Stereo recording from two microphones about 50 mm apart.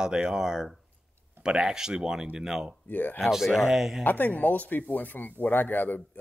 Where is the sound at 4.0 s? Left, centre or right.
Left.